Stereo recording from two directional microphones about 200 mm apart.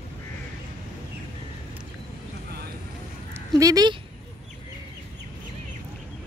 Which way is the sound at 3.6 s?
20° right (ahead or behind).